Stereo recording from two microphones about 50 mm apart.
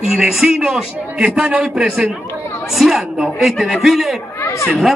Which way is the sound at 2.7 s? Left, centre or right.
Centre.